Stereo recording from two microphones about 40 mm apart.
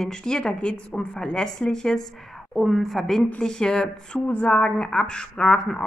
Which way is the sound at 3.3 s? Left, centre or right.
Centre.